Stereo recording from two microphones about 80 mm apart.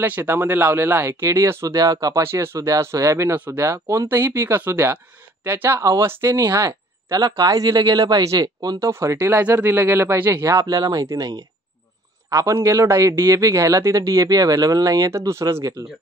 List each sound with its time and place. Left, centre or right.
0.0 s speech: right
2.2 s speech: right
8.7 s speech: right
10.4 s speech: right
12.3 s speech: right
15.8 s speech: right